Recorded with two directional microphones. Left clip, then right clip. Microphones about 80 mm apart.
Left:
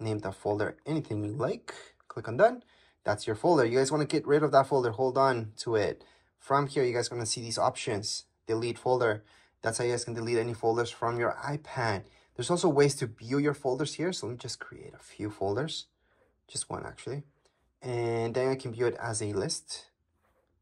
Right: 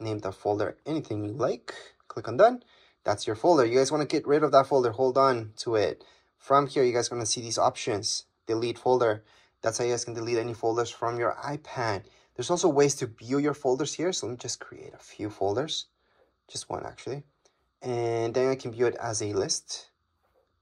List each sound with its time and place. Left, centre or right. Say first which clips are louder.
0.0 s speech: right 3 dB; right